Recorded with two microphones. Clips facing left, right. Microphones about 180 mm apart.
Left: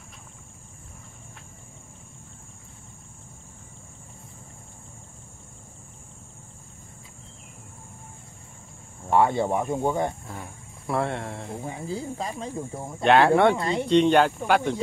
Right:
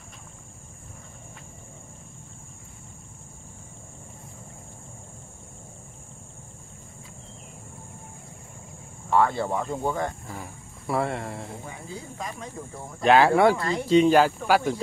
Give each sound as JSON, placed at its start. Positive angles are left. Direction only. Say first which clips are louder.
{"t": 9.1, "sound": "speech", "louder": "left 2 dB", "side_deg": 20}
{"t": 10.2, "sound": "speech", "louder": "right 1 dB", "side_deg": 0}
{"t": 11.6, "sound": "speech", "louder": "left 7 dB", "side_deg": 30}
{"t": 13.0, "sound": "speech", "louder": "even", "side_deg": 0}
{"t": 13.6, "sound": "speech", "louder": "left 2 dB", "side_deg": 25}
{"t": 13.8, "sound": "speech", "louder": "right 1 dB", "side_deg": -5}